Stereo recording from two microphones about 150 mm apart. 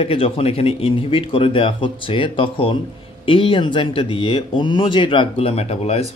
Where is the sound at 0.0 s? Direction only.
40° left (ahead or behind).